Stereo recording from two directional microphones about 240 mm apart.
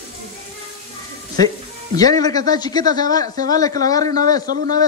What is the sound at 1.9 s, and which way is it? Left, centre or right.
A man's voice, centre.